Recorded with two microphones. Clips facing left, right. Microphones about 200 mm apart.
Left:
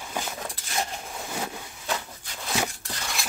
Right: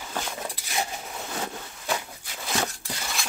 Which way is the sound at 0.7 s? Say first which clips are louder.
Even; 5° right (ahead or behind).